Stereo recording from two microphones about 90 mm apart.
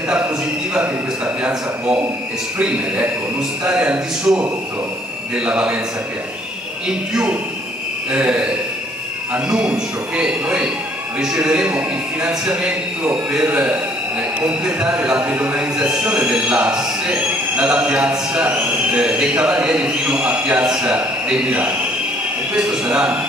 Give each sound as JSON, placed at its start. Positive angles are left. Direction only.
{"t": 0.7, "sound": "a sound", "side_deg": -10}
{"t": 2.6, "sound": "a man's voice", "side_deg": -10}
{"t": 6.9, "sound": "a man's voice", "side_deg": -10}